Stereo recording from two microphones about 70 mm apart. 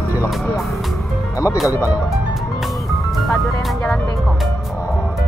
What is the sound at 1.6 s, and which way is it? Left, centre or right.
Speech, left.